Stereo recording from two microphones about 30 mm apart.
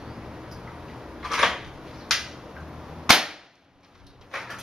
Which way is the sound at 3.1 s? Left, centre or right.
Centre.